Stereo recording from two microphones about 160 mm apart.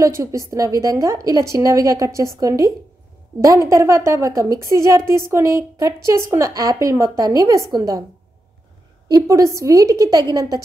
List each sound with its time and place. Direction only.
0.0 s a woman's voice: 20° right (ahead or behind)
9.1 s a woman's voice: 20° right (ahead or behind)